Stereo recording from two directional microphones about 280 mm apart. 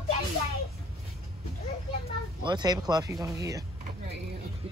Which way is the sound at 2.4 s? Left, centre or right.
Centre.